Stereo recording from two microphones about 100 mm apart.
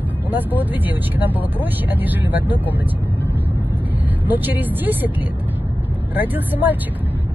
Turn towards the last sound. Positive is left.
turn(degrees=-20)  # may be behind; listen again after turning